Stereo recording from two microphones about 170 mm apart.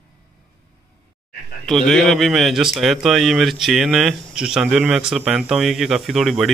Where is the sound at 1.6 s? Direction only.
Centre (ahead or behind).